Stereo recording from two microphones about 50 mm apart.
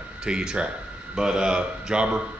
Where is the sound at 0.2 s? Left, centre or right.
Centre.